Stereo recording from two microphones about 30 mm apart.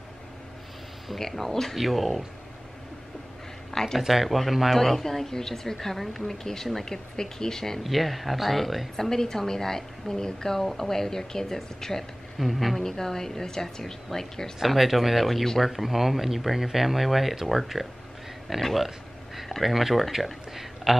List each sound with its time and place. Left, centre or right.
1.3 s speech: centre
1.8 s speech: centre
3.7 s speech: centre
4.1 s speech: centre
7.8 s speech: centre
9.1 s a woman's voice: centre
12.4 s speech: centre
12.8 s speech: centre
14.7 s speech: centre
18.6 s speech: centre